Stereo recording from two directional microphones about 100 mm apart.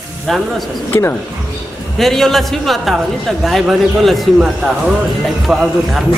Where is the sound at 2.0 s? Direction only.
Centre (ahead or behind).